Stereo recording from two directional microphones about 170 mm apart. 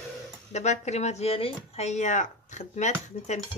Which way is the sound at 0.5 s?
40° left (ahead or behind).